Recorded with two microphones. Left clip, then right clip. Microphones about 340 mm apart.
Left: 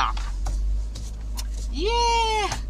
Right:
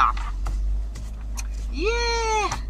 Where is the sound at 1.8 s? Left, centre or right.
Centre.